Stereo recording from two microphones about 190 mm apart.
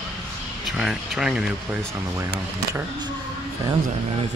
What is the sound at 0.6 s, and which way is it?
Speech, centre (ahead or behind).